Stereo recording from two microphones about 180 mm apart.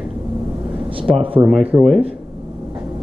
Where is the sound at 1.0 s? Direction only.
30° right (ahead or behind).